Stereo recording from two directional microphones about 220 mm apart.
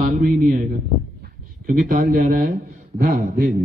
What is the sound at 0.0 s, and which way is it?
Speech, 40° right (ahead or behind).